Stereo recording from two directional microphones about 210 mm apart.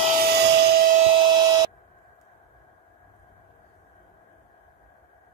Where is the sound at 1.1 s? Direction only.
25° right (ahead or behind).